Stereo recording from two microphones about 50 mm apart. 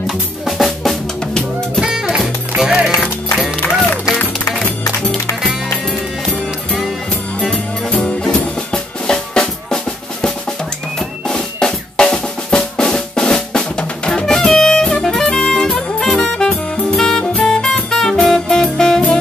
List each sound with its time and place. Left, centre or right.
0.5 s drum: centre
1.8 s music: centre
3.6 s music: left
7.3 s music: centre
11.0 s drum: centre
14.2 s music: centre
16.9 s saxophone: centre
17.2 s music: left